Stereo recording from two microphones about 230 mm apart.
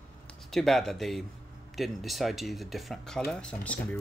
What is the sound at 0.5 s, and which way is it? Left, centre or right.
Speech, centre.